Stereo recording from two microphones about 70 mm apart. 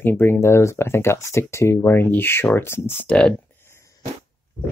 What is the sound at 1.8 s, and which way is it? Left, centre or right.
Speech, left.